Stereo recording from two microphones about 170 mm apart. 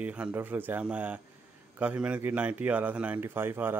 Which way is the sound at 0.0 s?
10° right (ahead or behind).